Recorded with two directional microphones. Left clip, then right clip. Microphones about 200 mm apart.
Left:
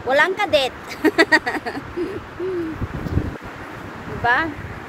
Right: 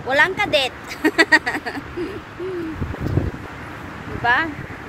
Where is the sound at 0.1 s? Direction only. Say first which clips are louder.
Even; 5° left (ahead or behind).